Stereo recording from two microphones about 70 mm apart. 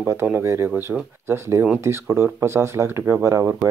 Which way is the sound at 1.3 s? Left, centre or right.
Right.